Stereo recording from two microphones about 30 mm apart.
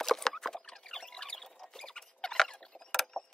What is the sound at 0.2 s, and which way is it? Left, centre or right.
Rodents, centre.